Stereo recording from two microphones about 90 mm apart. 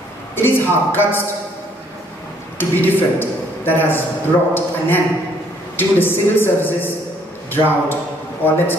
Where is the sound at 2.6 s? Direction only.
20° left (ahead or behind).